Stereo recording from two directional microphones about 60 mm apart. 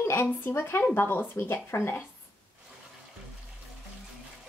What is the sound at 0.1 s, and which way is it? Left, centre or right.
Speech, left.